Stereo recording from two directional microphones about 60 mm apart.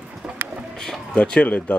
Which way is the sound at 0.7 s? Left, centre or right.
Centre.